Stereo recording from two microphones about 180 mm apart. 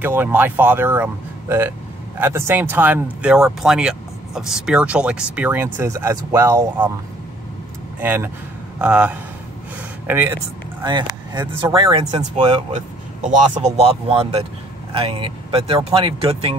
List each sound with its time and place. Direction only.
0.0 s speech: 10° right (ahead or behind)
8.0 s a man's voice: 10° right (ahead or behind)
10.8 s speech: 25° right (ahead or behind)
13.6 s speech: 35° right (ahead or behind)